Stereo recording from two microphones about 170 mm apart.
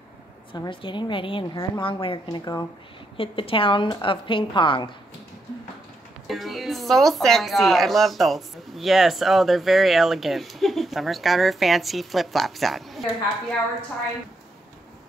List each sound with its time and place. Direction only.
0.5 s a woman's voice: 30° left (ahead or behind)
3.2 s a woman's voice: 30° left (ahead or behind)
6.2 s speech: centre (ahead or behind)